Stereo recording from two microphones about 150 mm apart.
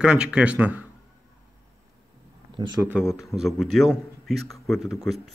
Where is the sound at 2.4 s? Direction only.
30° right (ahead or behind).